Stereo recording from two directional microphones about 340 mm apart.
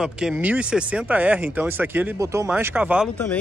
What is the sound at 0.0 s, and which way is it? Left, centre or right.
Speech, centre.